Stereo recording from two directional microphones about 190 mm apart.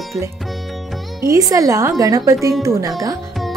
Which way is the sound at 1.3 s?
15° right (ahead or behind).